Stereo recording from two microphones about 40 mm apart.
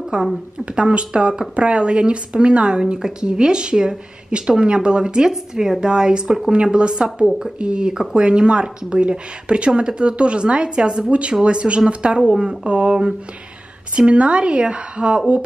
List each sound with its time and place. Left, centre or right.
0.1 s a woman's voice: right
6.5 s a woman's voice: right
13.9 s a woman's voice: right